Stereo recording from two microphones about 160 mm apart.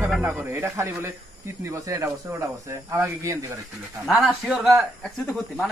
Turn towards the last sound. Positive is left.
turn(degrees=0)  # may be behind; listen again after turning